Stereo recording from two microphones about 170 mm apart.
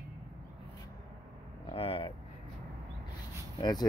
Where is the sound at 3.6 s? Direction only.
25° left (ahead or behind).